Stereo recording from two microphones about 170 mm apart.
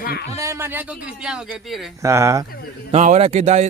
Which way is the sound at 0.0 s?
65° left (ahead or behind).